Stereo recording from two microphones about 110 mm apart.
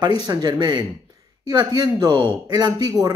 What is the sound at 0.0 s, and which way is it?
Speech, 40° right (ahead or behind).